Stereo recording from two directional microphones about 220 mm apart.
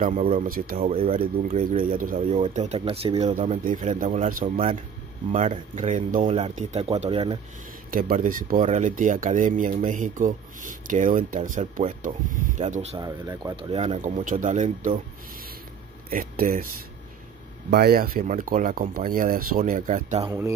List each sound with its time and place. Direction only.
0.0 s speech: 35° right (ahead or behind)
0.8 s speech: 25° right (ahead or behind)
7.9 s speech: 40° right (ahead or behind)
13.0 s speech: 15° right (ahead or behind)
16.1 s speech: 40° right (ahead or behind)
17.6 s speech: 45° right (ahead or behind)
20.2 s speech: 10° right (ahead or behind)